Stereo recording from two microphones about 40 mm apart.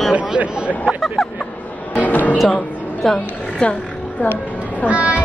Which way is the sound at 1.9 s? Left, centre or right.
Left.